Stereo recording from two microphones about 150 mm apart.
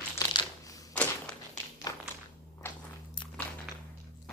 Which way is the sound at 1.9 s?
25° left (ahead or behind).